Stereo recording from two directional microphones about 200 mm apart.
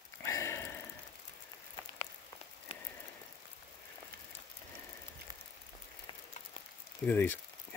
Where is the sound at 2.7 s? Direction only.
30° left (ahead or behind).